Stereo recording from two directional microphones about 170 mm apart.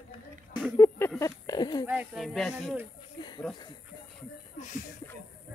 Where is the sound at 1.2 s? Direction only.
20° left (ahead or behind).